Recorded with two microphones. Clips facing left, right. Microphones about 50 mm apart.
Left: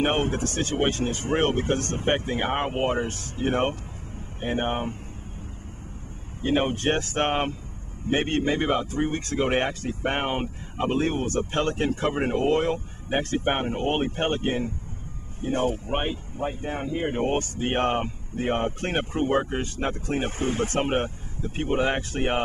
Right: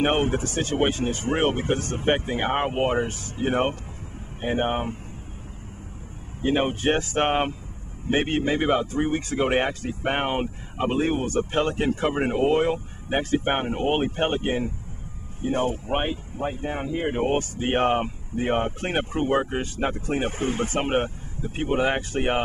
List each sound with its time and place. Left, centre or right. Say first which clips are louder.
0.0 s speech: right 2 dB; centre
6.4 s speech: right 1 dB; centre